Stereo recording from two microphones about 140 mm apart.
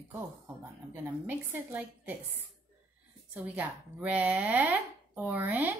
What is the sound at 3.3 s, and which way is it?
Speech, 10° right (ahead or behind).